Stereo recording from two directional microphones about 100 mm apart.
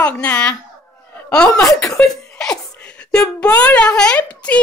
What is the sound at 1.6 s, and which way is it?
Speech, 35° left (ahead or behind).